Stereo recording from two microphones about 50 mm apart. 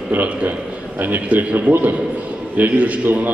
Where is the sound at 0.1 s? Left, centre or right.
Right.